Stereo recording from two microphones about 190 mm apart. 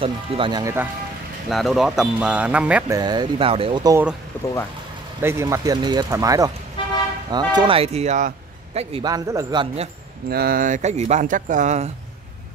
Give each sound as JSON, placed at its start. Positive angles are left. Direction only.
{"t": 0.0, "sound": "speech", "side_deg": -25}
{"t": 1.5, "sound": "a man's voice", "side_deg": 0}
{"t": 3.0, "sound": "speech", "side_deg": -20}
{"t": 4.3, "sound": "speech", "side_deg": 10}
{"t": 5.2, "sound": "a man's voice", "side_deg": -15}
{"t": 8.9, "sound": "speech", "side_deg": -20}
{"t": 10.3, "sound": "speech", "side_deg": -50}